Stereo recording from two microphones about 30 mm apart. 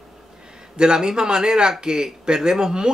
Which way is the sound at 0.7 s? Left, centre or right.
Right.